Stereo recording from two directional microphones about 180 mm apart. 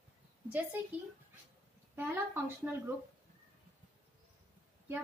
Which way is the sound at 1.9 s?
10° right (ahead or behind).